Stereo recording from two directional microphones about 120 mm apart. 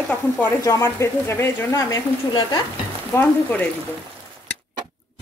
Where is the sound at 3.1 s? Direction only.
15° left (ahead or behind).